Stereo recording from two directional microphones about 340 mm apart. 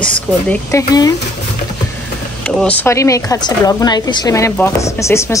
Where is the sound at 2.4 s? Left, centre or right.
Centre.